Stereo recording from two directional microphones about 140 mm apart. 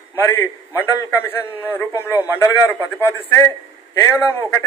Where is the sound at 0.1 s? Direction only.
20° left (ahead or behind).